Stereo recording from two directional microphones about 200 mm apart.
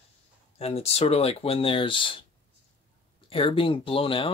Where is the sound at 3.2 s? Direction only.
25° left (ahead or behind).